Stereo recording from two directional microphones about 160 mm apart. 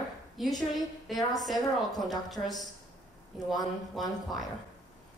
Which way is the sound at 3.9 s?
Centre (ahead or behind).